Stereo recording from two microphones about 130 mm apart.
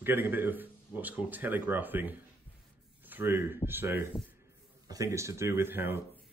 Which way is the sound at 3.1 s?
15° right (ahead or behind).